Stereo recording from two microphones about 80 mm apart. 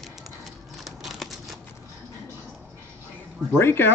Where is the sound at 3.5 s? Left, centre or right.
Left.